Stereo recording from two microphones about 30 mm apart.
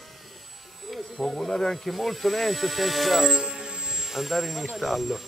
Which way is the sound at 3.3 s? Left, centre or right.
Right.